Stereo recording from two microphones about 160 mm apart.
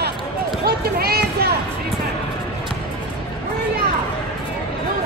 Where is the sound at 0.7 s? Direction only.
75° right (ahead or behind).